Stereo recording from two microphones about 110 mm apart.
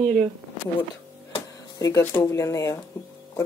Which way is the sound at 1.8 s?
30° left (ahead or behind).